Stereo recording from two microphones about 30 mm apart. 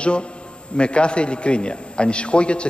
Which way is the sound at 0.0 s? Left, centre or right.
Left.